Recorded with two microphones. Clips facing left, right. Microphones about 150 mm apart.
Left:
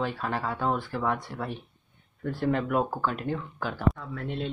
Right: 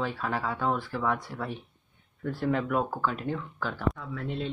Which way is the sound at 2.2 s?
Centre (ahead or behind).